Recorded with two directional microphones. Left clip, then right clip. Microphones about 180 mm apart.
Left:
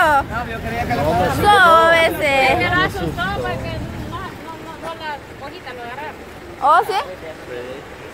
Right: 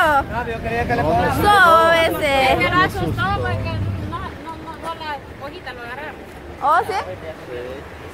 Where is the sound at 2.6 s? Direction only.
50° right (ahead or behind).